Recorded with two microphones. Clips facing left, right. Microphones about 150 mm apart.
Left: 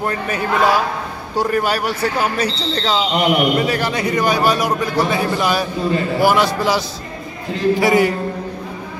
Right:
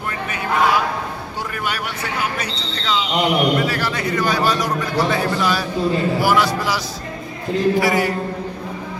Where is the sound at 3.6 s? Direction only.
20° left (ahead or behind).